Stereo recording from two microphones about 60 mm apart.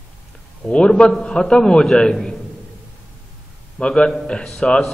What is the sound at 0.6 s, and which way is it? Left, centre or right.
A man's voice, centre.